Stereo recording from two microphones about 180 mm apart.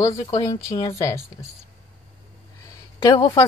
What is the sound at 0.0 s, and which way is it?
Speech, 20° left (ahead or behind).